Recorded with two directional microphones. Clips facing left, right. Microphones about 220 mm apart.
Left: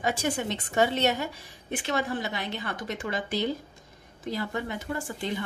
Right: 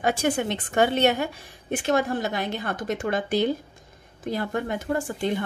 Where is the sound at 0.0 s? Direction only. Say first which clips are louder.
Right 5 dB; 60° right (ahead or behind).